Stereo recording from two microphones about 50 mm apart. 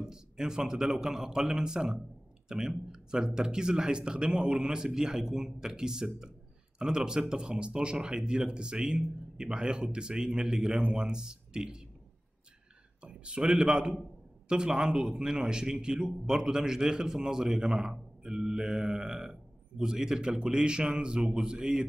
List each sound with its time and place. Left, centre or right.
0.0 s a man's voice: centre
13.0 s a sound: right
13.5 s a man's voice: centre